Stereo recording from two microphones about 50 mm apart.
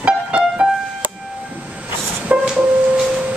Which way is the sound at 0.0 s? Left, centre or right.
Right.